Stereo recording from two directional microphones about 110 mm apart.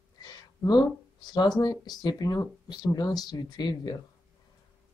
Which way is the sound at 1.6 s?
35° left (ahead or behind).